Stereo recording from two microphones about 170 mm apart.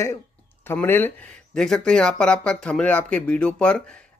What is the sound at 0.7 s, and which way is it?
Speech, 15° left (ahead or behind).